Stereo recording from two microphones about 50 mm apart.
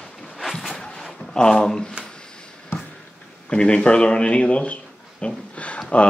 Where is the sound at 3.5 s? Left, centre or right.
Centre.